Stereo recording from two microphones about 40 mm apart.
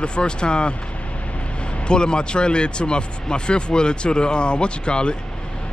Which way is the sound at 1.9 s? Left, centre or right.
Left.